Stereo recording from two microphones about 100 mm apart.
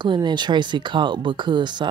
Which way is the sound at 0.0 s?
50° right (ahead or behind).